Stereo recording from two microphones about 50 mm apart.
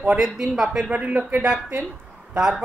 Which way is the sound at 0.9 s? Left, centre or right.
Right.